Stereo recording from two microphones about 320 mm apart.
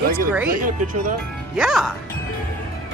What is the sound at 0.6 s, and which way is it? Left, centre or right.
Speech, right.